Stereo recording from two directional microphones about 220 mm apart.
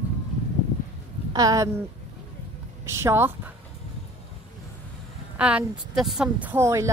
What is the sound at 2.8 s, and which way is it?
Speech, 10° right (ahead or behind).